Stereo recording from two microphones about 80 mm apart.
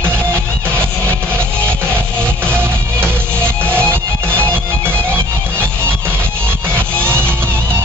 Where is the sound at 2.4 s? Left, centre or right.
Right.